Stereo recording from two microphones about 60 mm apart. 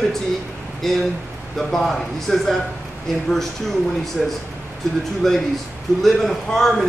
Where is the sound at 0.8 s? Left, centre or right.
Centre.